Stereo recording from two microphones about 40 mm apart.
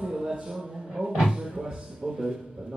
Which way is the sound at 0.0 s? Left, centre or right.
Centre.